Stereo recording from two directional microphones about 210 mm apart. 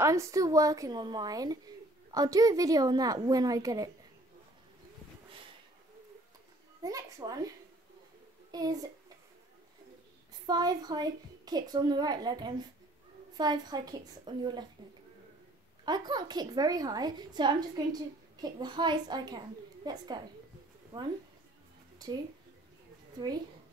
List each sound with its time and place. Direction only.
0.0 s a woman's voice: 15° right (ahead or behind)
6.8 s a child's voice: 15° right (ahead or behind)
8.5 s speech: 20° right (ahead or behind)
10.4 s a woman's voice: 20° right (ahead or behind)
15.8 s a woman's voice: 20° right (ahead or behind)
23.1 s a woman's voice: 20° right (ahead or behind)